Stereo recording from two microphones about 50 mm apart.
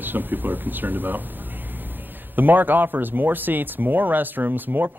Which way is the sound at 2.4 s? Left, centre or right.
Right.